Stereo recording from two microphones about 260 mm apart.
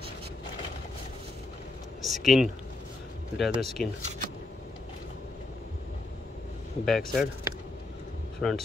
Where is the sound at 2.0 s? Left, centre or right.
Centre.